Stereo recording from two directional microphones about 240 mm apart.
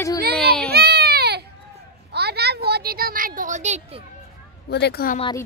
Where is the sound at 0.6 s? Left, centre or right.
Right.